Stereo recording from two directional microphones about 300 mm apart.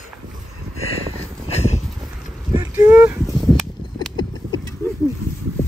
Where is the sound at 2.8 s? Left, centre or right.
Centre.